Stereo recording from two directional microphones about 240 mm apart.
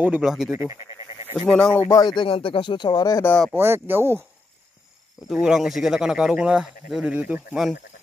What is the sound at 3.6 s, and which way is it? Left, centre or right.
Speech, centre.